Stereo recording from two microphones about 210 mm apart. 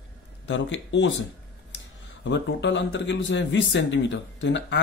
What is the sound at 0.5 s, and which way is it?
Speech, 60° left (ahead or behind).